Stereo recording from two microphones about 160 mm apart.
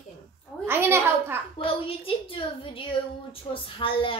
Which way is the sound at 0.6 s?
15° right (ahead or behind).